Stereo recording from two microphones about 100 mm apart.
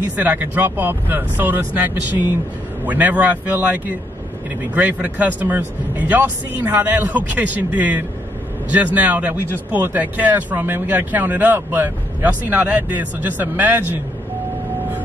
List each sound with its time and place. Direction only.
0.1 s speech: 15° right (ahead or behind)